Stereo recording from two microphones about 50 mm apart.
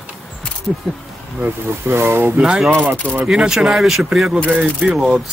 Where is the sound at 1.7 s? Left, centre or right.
Right.